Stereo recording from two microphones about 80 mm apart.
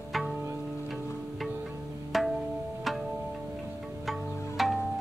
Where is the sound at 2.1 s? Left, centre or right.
Centre.